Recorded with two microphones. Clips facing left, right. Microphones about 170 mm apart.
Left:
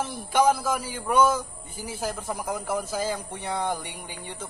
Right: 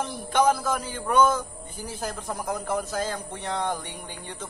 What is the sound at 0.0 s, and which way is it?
A man's voice, 10° left (ahead or behind).